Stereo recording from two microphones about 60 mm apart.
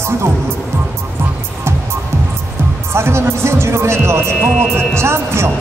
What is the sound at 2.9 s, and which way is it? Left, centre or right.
Speech, right.